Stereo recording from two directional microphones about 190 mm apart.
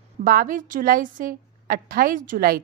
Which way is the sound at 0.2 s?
45° right (ahead or behind).